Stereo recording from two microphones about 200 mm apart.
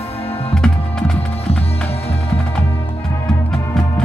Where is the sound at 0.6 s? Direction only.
5° left (ahead or behind).